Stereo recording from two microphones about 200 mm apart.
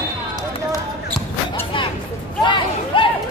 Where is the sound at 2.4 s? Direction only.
25° left (ahead or behind).